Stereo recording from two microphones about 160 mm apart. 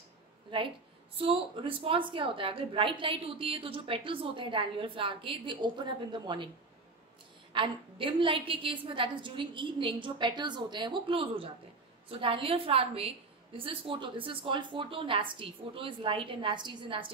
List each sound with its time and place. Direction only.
0.5 s a woman's voice: 30° right (ahead or behind)
7.5 s a woman's voice: 30° right (ahead or behind)